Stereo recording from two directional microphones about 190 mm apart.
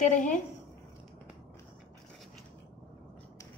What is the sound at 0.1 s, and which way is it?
Speech, 40° left (ahead or behind).